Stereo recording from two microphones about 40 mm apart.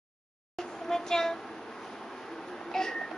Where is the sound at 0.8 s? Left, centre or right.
Centre.